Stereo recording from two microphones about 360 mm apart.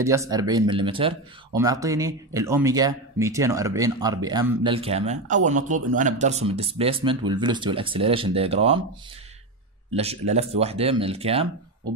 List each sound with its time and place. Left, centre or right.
0.0 s speech: centre
9.9 s speech: centre